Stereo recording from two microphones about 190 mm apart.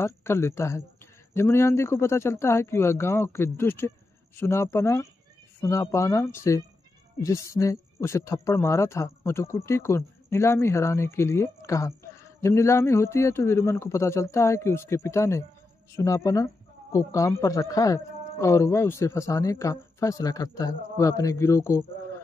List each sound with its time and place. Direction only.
0.0 s speech: 15° left (ahead or behind)